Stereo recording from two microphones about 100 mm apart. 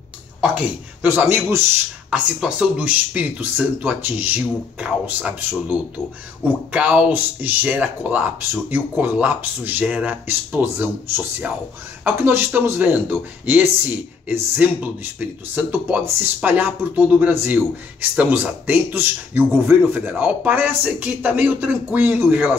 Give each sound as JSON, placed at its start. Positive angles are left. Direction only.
{"t": 0.4, "sound": "speech", "side_deg": -15}